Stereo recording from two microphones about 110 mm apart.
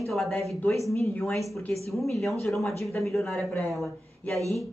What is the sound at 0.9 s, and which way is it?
Speech, 25° left (ahead or behind).